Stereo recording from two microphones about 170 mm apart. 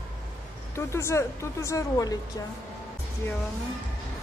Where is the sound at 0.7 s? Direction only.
15° left (ahead or behind).